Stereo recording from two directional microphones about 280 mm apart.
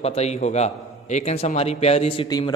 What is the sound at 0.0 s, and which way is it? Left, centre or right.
A man's voice, left.